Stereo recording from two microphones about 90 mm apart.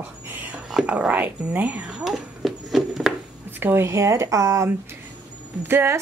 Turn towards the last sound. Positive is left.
turn(degrees=-25)  # may be behind; listen again after turning